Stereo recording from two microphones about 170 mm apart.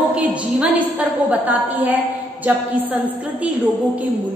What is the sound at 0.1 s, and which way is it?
A woman's voice, 5° right (ahead or behind).